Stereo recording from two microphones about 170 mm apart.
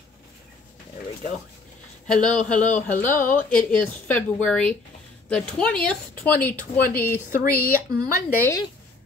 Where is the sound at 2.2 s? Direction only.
5° left (ahead or behind).